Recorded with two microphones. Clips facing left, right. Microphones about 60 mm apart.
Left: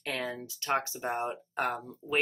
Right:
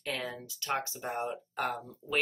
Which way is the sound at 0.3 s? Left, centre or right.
Left.